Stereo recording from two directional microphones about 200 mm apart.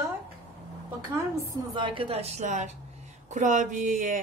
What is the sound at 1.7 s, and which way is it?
A woman's voice, 25° right (ahead or behind).